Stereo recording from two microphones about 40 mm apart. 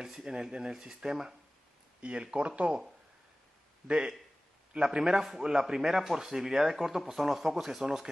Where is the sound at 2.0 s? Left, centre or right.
Right.